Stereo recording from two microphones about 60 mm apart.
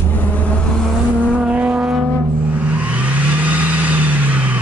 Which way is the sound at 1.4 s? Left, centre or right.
Right.